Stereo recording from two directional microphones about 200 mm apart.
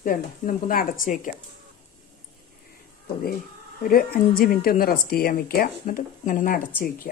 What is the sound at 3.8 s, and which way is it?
Speech, 45° left (ahead or behind).